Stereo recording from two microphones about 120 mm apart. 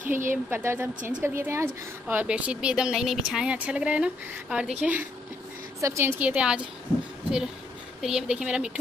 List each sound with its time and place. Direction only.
0.0 s speech: 90° right
0.3 s a woman's voice: 20° right (ahead or behind)
5.8 s a woman's voice: 25° right (ahead or behind)
8.0 s speech: 5° right (ahead or behind)